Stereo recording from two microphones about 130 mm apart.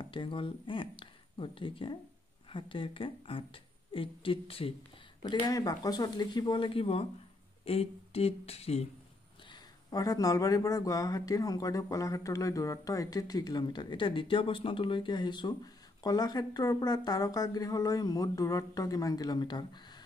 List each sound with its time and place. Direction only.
0.0 s a woman's voice: 40° left (ahead or behind)
5.3 s a woman's voice: 30° left (ahead or behind); by 8.8 s 50° left (ahead or behind)
9.5 s speech: 30° left (ahead or behind)